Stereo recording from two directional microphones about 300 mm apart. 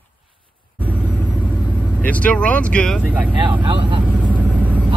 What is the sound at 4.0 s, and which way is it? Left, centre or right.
Vehicle, centre.